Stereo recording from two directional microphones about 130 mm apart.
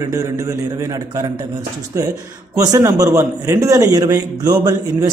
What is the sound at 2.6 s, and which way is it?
A man's voice, 25° right (ahead or behind).